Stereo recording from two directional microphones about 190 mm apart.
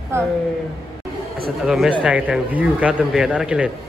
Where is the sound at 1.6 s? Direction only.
Centre (ahead or behind).